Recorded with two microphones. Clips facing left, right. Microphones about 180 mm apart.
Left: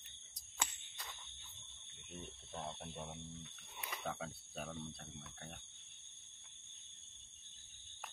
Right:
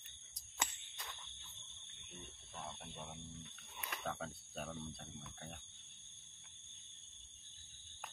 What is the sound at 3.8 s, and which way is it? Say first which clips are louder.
Speech: even; 5° left (ahead or behind).